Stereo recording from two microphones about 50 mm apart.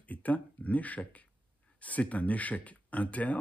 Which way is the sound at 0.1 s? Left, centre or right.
Left.